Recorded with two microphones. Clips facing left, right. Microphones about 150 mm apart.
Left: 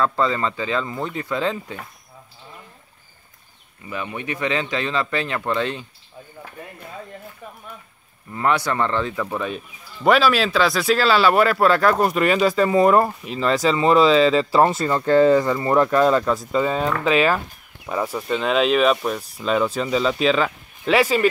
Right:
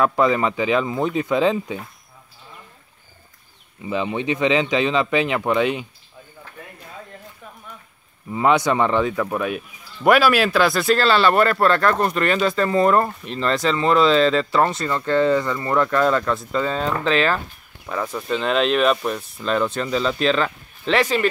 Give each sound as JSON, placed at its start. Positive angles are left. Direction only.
{"t": 0.0, "sound": "speech", "side_deg": -15}
{"t": 3.8, "sound": "speech", "side_deg": -20}
{"t": 8.3, "sound": "speech", "side_deg": -15}